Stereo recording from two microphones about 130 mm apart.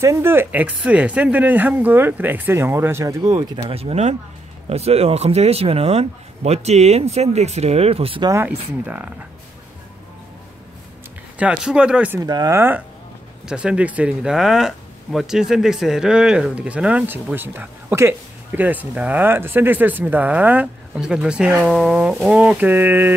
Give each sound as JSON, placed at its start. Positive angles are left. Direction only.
{"t": 0.0, "sound": "speech", "side_deg": -20}
{"t": 3.7, "sound": "speech", "side_deg": -50}
{"t": 8.5, "sound": "speech", "side_deg": -10}
{"t": 11.3, "sound": "speech", "side_deg": -10}
{"t": 12.2, "sound": "speech", "side_deg": -30}
{"t": 12.5, "sound": "speech", "side_deg": -15}